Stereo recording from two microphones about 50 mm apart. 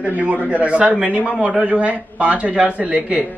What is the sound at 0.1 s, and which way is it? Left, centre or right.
A man's voice, right.